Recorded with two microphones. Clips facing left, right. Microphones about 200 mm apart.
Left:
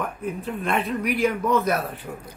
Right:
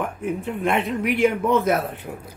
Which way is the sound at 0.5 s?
20° right (ahead or behind).